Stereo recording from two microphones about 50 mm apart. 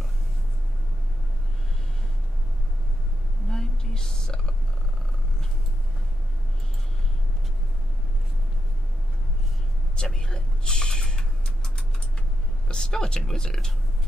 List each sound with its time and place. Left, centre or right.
3.4 s whispering: centre
9.9 s a sound: centre
12.6 s speech: centre